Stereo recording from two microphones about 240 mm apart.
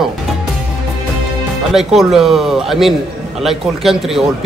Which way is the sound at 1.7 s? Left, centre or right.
Centre.